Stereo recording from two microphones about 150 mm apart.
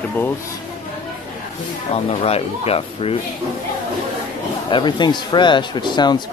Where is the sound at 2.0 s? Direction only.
40° left (ahead or behind).